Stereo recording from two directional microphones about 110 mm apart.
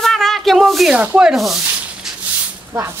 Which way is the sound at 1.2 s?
5° right (ahead or behind).